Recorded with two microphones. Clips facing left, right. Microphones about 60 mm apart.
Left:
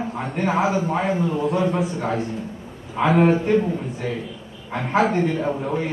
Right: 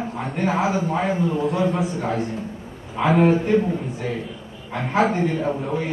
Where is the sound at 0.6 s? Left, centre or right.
Left.